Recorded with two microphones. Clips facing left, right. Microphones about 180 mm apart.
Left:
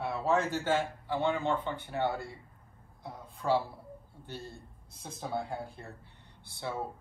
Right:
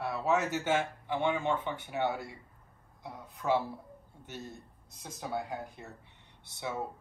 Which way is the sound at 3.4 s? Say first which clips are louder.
Left 1 dB; 5° right (ahead or behind).